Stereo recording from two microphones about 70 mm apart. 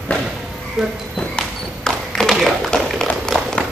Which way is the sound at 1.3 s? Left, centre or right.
Centre.